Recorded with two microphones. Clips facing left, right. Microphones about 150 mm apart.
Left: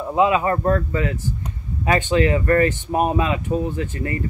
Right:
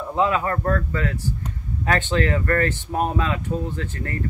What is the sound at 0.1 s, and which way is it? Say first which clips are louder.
Speech: left 4 dB; 15° left (ahead or behind).